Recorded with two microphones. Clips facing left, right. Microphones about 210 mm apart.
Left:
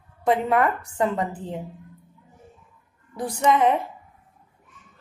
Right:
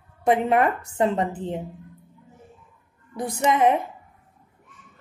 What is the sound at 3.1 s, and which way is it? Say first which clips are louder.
Speech: left 1 dB; 20° right (ahead or behind).